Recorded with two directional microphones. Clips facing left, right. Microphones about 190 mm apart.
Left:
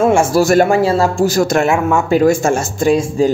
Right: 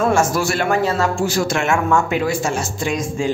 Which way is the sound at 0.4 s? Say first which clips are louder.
Left 8 dB; 45° left (ahead or behind).